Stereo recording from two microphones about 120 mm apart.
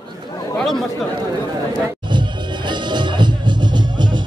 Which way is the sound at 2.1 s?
40° right (ahead or behind).